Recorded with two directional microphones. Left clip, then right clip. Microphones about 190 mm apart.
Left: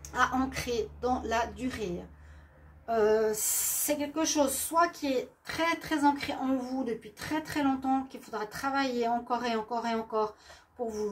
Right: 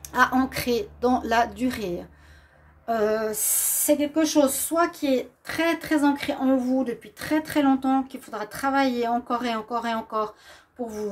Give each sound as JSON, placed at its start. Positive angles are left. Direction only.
{"t": 0.0, "sound": "a woman's voice", "side_deg": -60}